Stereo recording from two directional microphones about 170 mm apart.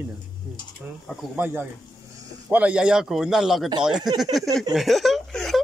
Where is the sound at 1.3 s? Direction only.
10° right (ahead or behind).